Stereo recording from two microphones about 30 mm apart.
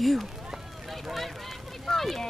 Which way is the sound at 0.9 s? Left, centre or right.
Centre.